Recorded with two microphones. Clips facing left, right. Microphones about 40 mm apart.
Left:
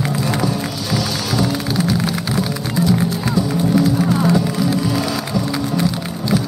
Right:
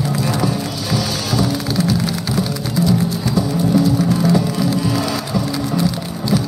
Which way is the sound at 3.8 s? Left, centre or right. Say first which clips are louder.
Even; centre.